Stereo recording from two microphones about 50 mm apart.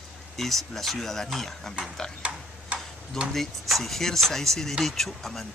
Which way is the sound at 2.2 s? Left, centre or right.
Right.